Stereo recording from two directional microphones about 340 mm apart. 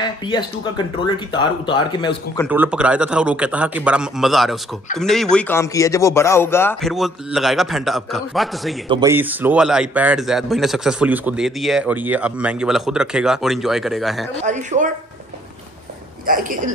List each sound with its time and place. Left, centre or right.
0.0 s speech: centre
2.4 s a man's voice: centre
8.8 s a man's voice: centre
14.4 s speech: right
16.3 s speech: right